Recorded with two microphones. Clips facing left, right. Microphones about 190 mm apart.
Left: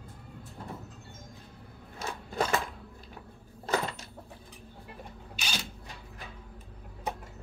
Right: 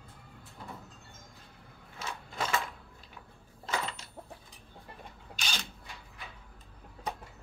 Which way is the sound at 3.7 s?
40° left (ahead or behind).